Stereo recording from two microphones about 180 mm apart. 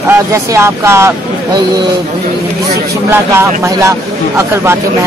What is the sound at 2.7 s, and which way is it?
A man's voice, 15° right (ahead or behind).